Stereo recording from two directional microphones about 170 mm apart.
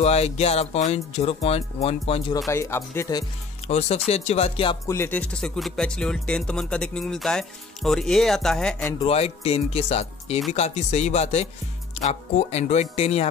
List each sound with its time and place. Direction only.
0.0 s speech: 40° left (ahead or behind)
2.5 s speech: 15° left (ahead or behind)
3.6 s speech: 40° left (ahead or behind)
4.8 s speech: 15° left (ahead or behind)
9.0 s speech: 35° left (ahead or behind)